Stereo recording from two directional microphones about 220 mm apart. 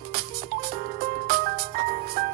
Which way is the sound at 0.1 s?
40° right (ahead or behind).